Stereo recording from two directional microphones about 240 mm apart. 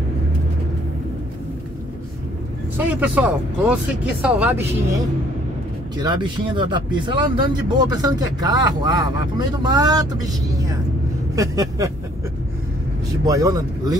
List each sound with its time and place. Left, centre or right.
2.8 s speech: centre
5.9 s speech: centre
13.2 s speech: centre